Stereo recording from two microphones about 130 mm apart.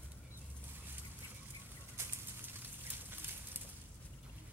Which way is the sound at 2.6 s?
15° right (ahead or behind).